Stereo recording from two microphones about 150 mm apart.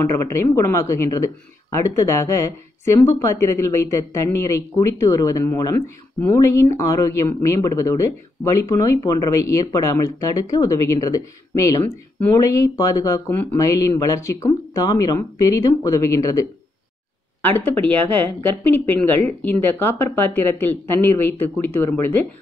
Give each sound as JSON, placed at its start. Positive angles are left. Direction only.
{"t": 0.0, "sound": "speech", "side_deg": 20}